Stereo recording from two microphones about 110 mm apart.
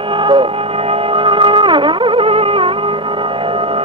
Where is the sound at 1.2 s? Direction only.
50° right (ahead or behind).